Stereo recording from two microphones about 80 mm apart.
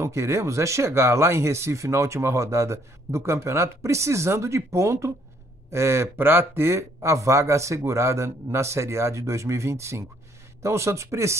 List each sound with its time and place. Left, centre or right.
0.0 s speech: right